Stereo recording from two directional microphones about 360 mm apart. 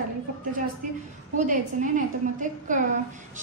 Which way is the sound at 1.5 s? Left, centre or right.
Right.